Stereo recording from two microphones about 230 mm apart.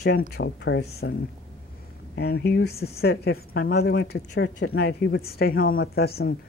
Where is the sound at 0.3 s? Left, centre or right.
Left.